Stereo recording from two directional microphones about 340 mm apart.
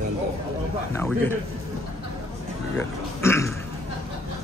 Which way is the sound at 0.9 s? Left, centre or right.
Centre.